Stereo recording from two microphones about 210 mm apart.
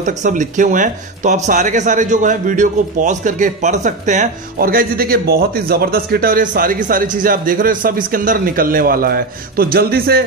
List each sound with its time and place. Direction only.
0.0 s a man's voice: 35° right (ahead or behind)